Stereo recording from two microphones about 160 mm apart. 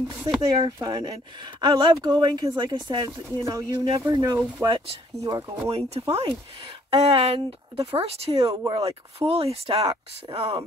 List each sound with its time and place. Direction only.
0.4 s speech: 25° right (ahead or behind)
8.5 s speech: 25° right (ahead or behind)
8.8 s speech: 35° right (ahead or behind)